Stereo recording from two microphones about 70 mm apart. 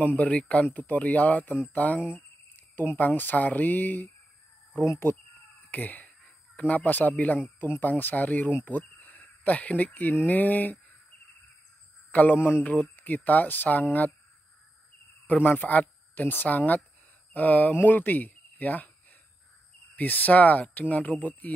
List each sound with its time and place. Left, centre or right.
0.0 s speech: left
4.8 s speech: left
5.7 s speech: left
12.1 s speech: left
15.2 s speech: left
20.0 s speech: left